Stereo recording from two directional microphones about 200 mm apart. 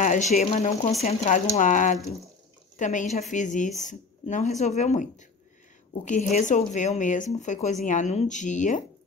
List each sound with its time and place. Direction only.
0.0 s speech: 35° left (ahead or behind)
6.0 s speech: 40° left (ahead or behind)